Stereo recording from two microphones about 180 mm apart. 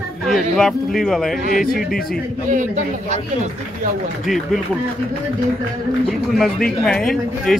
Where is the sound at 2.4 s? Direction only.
45° right (ahead or behind).